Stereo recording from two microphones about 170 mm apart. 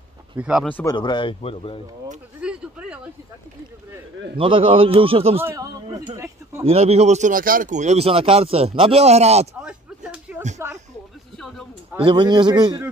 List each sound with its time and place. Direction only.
0.4 s speech: 5° right (ahead or behind)
0.7 s speech: 10° left (ahead or behind)
0.9 s a man's voice: 30° left (ahead or behind)
2.4 s a sound: 5° right (ahead or behind)
4.4 s a man's voice: 30° right (ahead or behind)
5.4 s speech: 15° right (ahead or behind)
6.6 s a man's voice: 35° right (ahead or behind)
9.6 s a sound: 5° right (ahead or behind)
12.0 s a man's voice: 30° right (ahead or behind)